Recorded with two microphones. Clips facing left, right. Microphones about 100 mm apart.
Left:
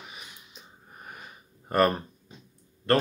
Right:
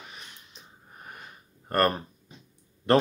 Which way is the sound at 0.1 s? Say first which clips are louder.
Left 1 dB; 5° left (ahead or behind).